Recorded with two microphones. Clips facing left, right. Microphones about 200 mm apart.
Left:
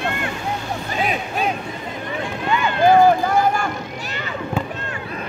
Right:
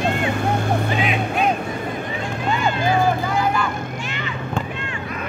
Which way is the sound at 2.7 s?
50° left (ahead or behind).